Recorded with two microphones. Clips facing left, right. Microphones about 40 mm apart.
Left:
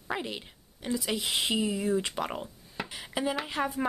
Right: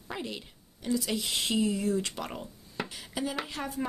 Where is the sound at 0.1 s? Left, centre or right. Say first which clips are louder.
Left 3 dB; left.